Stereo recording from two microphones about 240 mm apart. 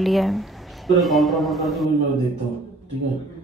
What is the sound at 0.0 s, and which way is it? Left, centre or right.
A man's voice, centre.